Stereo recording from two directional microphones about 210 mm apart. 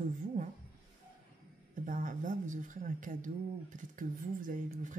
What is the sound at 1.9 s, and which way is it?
A woman's voice, 40° right (ahead or behind).